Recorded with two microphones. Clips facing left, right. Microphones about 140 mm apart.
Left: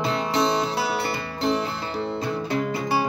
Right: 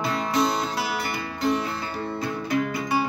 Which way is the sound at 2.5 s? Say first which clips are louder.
Right 1 dB; 30° left (ahead or behind).